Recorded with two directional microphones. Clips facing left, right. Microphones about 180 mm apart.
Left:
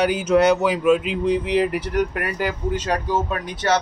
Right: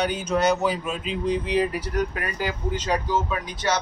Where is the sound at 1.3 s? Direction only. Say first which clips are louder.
Left 3 dB; 75° left (ahead or behind).